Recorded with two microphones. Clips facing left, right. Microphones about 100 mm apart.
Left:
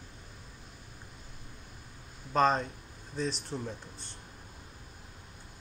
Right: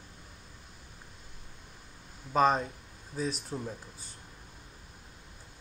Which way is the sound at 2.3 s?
5° right (ahead or behind).